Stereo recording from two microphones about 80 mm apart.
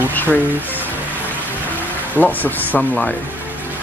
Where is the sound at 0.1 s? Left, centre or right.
Left.